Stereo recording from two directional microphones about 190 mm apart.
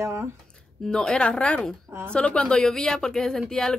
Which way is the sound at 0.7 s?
5° left (ahead or behind).